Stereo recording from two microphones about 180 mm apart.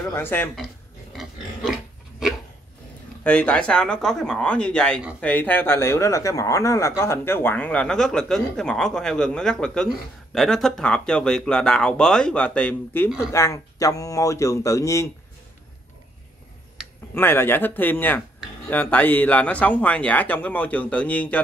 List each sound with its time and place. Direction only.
0.0 s speech: 10° left (ahead or behind)
1.1 s pig: centre (ahead or behind)
3.3 s speech: 5° left (ahead or behind)
17.1 s speech: 10° left (ahead or behind)